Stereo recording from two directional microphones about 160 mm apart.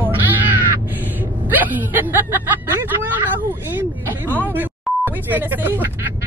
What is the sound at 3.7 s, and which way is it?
Speech, 10° right (ahead or behind).